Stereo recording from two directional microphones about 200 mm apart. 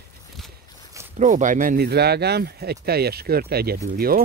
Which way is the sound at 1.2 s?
40° right (ahead or behind).